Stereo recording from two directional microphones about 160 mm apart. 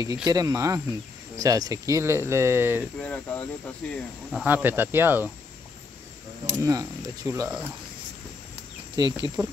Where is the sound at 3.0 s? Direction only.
10° left (ahead or behind).